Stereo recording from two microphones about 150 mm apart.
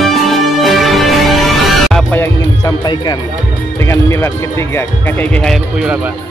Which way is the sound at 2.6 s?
30° left (ahead or behind).